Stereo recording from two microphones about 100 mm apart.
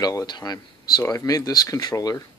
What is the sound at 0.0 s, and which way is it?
Speech, 40° left (ahead or behind).